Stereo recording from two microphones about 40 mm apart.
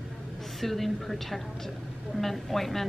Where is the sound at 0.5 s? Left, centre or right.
Centre.